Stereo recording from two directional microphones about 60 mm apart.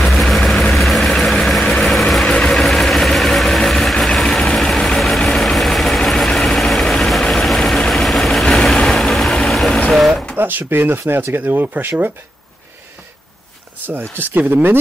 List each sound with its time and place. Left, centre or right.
0.0 s vehicle: centre
2.0 s vehicle: centre
2.2 s vehicle: centre
2.5 s vehicle: centre
10.3 s speech: right
13.7 s a sound: right
14.2 s speech: right